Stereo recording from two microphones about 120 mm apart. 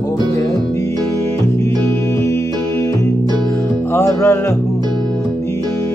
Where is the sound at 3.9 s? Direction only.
20° left (ahead or behind).